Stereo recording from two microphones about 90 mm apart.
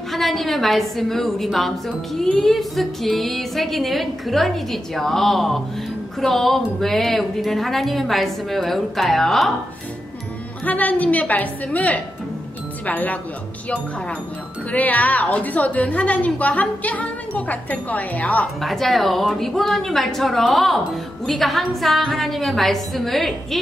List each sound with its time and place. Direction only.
0.1 s music: centre (ahead or behind)
10.6 s a woman's voice: 15° left (ahead or behind)
14.7 s a woman's voice: 15° left (ahead or behind)
18.6 s music: centre (ahead or behind)